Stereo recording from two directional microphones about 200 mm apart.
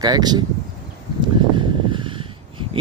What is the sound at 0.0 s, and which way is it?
Speech, 20° right (ahead or behind).